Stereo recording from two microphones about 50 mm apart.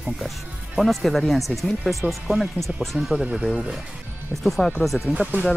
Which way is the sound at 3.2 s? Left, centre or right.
Centre.